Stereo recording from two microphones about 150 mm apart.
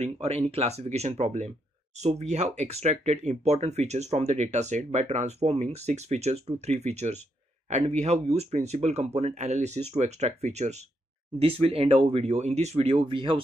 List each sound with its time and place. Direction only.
0.0 s speech: 45° right (ahead or behind)